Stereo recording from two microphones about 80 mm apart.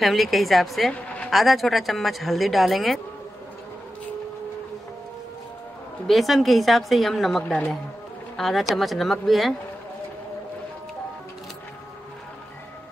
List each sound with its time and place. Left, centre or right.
0.0 s speech: centre
0.9 s a sound: centre
1.3 s speech: centre
6.0 s speech: centre